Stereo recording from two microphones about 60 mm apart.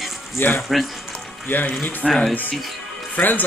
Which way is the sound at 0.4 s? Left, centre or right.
Left.